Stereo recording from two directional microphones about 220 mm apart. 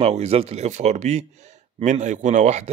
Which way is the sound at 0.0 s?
30° right (ahead or behind).